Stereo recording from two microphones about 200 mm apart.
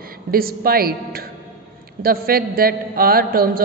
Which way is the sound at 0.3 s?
50° right (ahead or behind).